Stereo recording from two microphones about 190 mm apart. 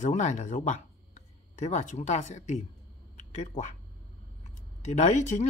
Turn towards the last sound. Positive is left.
turn(degrees=40)  # may be behind; listen again after turning